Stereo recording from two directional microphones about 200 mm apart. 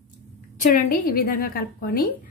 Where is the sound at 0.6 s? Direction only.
45° left (ahead or behind).